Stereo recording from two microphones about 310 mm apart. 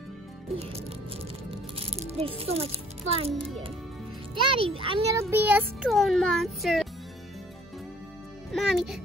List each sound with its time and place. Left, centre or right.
0.6 s music: centre
4.6 s a child's voice: centre
5.2 s speech: centre
8.5 s a child's voice: centre